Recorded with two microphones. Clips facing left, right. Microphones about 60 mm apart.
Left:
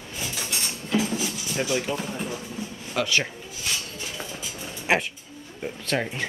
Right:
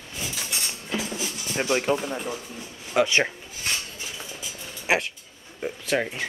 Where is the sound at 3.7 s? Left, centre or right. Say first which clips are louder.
Right 1 dB; right.